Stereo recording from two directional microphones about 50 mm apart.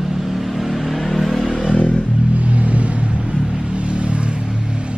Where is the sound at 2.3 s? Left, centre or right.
Right.